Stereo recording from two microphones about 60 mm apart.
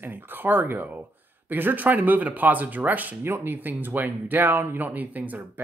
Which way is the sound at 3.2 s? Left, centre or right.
Right.